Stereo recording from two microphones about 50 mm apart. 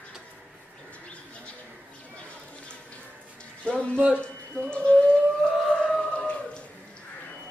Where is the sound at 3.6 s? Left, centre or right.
Left.